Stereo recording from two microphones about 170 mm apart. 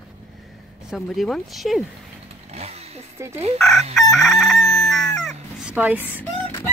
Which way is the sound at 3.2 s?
15° right (ahead or behind).